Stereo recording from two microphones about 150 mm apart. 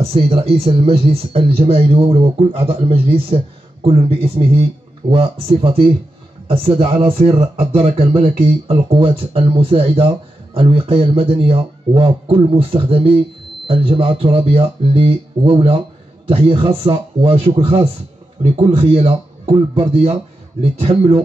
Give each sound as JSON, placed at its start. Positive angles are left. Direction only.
{"t": 0.0, "sound": "speech", "side_deg": -40}